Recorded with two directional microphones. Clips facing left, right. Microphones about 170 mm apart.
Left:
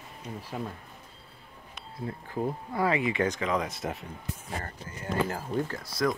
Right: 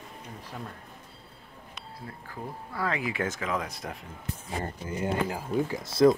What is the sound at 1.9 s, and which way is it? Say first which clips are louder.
Speech: left 9 dB; 25° left (ahead or behind).